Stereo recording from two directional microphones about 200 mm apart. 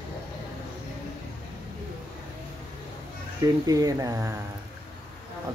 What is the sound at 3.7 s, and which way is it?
Speech, 15° right (ahead or behind).